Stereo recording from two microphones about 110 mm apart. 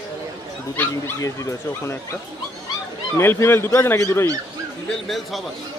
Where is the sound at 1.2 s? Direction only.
25° left (ahead or behind).